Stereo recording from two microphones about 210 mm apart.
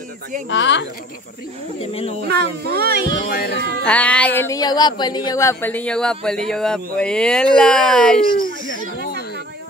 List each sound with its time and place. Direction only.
0.5 s speech: 60° left (ahead or behind)
2.2 s speech: 50° right (ahead or behind)
3.3 s speech: 50° left (ahead or behind)
3.8 s speech: 5° left (ahead or behind)